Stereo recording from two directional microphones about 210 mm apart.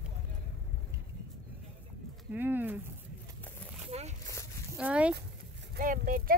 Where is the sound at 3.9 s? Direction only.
30° right (ahead or behind).